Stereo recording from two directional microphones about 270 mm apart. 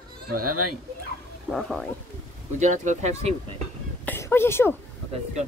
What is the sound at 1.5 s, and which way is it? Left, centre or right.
Speech, centre.